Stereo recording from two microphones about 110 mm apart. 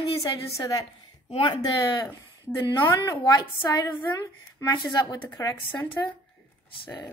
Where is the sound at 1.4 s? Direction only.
45° left (ahead or behind).